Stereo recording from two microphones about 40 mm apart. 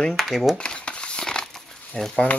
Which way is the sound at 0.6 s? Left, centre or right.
Left.